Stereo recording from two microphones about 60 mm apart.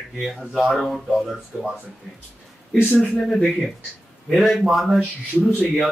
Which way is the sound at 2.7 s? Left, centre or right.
Left.